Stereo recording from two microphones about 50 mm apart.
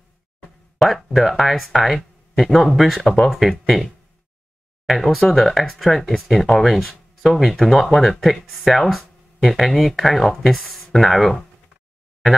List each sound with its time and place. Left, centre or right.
0.7 s speech: centre